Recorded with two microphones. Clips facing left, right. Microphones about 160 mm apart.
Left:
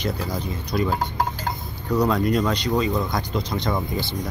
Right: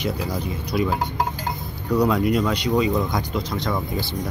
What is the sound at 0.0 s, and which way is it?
Speech, 10° right (ahead or behind).